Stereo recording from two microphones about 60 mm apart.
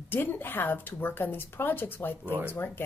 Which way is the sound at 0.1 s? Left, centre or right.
Left.